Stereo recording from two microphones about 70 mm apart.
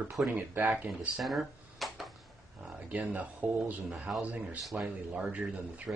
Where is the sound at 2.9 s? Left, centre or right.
Right.